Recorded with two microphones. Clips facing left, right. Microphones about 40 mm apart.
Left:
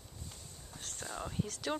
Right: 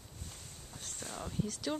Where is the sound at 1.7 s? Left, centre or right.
Left.